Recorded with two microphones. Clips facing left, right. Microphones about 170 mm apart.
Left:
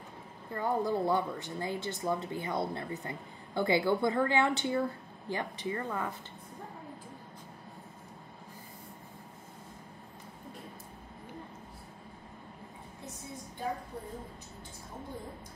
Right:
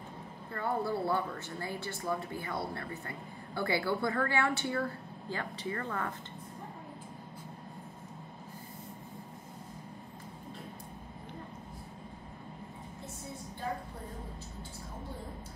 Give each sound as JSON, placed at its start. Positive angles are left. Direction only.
{"t": 0.5, "sound": "a woman's voice", "side_deg": 15}